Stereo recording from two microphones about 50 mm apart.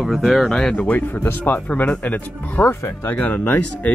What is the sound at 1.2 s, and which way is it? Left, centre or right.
Speech, left.